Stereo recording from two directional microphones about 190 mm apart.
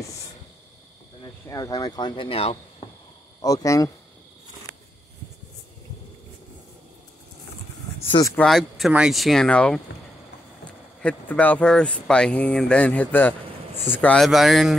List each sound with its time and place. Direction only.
1.2 s speech: 15° left (ahead or behind)
3.3 s speech: 20° left (ahead or behind)
8.1 s speech: 15° left (ahead or behind)
8.4 s speech: centre (ahead or behind)
11.0 s speech: 5° left (ahead or behind)